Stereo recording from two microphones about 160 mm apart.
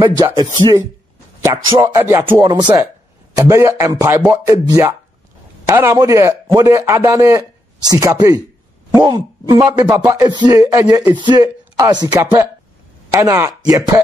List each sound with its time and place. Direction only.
0.0 s a man's voice: 25° right (ahead or behind)
1.4 s music: 20° right (ahead or behind)
2.3 s a man's voice: 30° right (ahead or behind)
5.9 s a man's voice: 20° right (ahead or behind)
11.1 s a man's voice: 30° right (ahead or behind)
13.1 s music: 15° right (ahead or behind)
13.7 s a man's voice: 20° right (ahead or behind)